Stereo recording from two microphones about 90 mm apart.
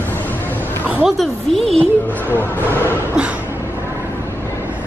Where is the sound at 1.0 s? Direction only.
Centre (ahead or behind).